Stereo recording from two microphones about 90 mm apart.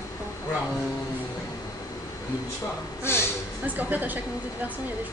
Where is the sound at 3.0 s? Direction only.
25° left (ahead or behind).